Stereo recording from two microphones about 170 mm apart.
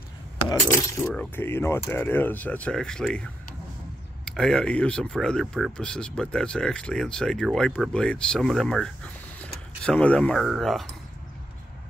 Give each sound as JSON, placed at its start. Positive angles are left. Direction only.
{"t": 0.5, "sound": "speech", "side_deg": 20}
{"t": 1.0, "sound": "speech", "side_deg": 0}
{"t": 1.3, "sound": "speech", "side_deg": 15}